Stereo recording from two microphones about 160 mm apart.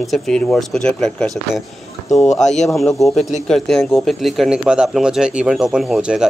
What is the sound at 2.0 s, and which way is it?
Speech, 50° left (ahead or behind).